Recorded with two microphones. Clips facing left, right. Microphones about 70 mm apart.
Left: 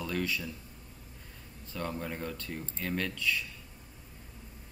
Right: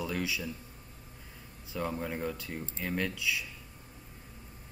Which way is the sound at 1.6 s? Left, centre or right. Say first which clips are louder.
Right 2 dB; centre.